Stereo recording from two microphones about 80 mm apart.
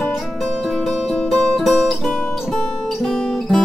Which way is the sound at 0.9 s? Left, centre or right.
Centre.